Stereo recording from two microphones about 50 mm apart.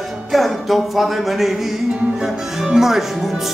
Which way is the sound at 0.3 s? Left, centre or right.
Centre.